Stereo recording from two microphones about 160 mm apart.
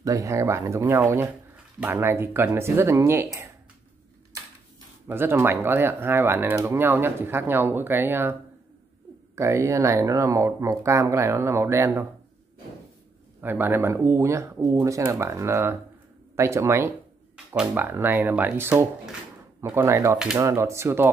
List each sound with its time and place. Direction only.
0.0 s speech: 20° right (ahead or behind)
5.0 s speech: 15° right (ahead or behind)
13.4 s speech: 15° right (ahead or behind)